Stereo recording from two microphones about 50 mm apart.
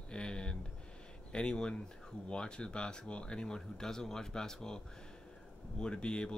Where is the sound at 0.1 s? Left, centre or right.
Centre.